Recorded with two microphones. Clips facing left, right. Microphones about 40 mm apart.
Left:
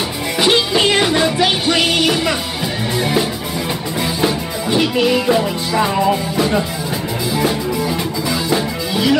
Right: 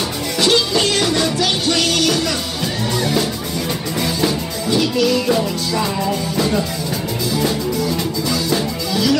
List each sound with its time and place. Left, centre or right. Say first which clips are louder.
0.4 s music: left 2 dB; left